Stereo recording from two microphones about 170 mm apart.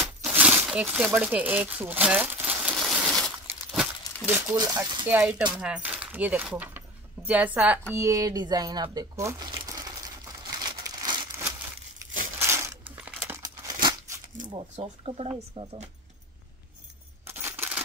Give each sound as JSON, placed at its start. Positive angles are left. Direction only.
{"t": 0.0, "sound": "crumpling", "side_deg": -10}
{"t": 4.4, "sound": "speech", "side_deg": -20}
{"t": 7.9, "sound": "a sound", "side_deg": -20}
{"t": 12.4, "sound": "crumpling", "side_deg": -15}
{"t": 13.4, "sound": "crumpling", "side_deg": -25}
{"t": 14.5, "sound": "speech", "side_deg": -30}
{"t": 17.3, "sound": "coin", "side_deg": -15}